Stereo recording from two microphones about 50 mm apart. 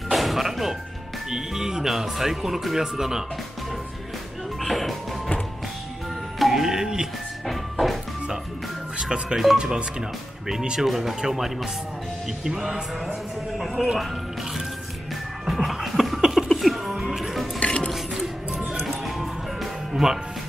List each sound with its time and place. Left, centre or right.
0.1 s music: centre
1.3 s speech: centre
4.6 s music: centre
6.4 s music: centre
7.4 s music: centre
8.9 s speech: centre
15.4 s music: centre
17.6 s cutlery: centre
17.9 s music: centre